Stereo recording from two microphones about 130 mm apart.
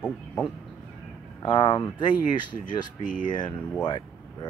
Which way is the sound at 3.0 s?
85° left.